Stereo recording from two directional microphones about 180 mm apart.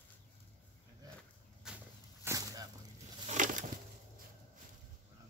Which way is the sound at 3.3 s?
45° right (ahead or behind).